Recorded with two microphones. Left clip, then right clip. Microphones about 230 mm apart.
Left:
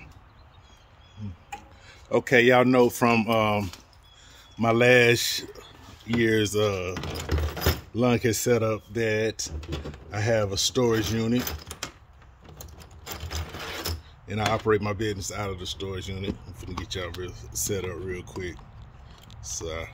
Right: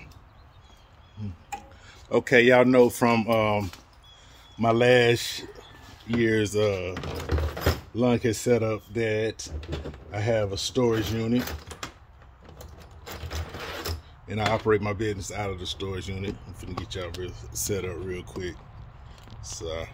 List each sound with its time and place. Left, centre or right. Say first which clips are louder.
1.9 s speech: even; centre
6.9 s mechanisms: even; left
7.9 s speech: left 1 dB; centre
12.5 s sewing machine: even; left
14.2 s speech: even; centre